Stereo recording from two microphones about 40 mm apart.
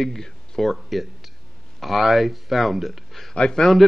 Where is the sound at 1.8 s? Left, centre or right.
Centre.